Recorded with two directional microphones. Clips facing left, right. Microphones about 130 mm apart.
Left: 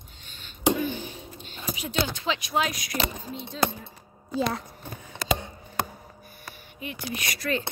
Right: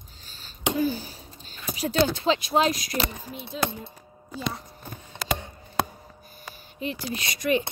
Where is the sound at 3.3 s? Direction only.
20° right (ahead or behind).